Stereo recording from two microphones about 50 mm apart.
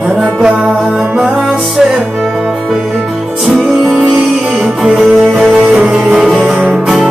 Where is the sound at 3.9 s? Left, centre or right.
Centre.